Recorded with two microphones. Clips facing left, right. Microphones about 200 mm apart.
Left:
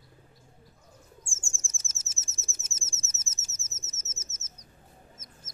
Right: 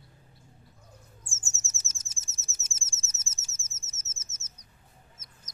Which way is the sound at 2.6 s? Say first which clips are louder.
Left 4 dB; 30° right (ahead or behind).